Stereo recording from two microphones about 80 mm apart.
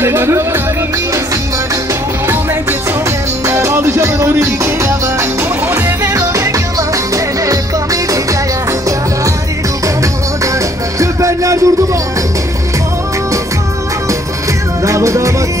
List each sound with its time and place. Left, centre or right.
0.0 s speech: right
3.4 s music: right
6.0 s music: right
11.0 s music: right
14.9 s music: right